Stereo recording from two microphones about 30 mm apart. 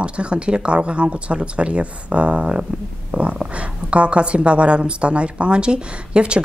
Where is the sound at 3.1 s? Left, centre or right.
Right.